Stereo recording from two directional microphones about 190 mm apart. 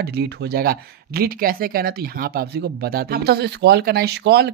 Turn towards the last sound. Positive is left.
turn(degrees=-60)  # may be behind; listen again after turning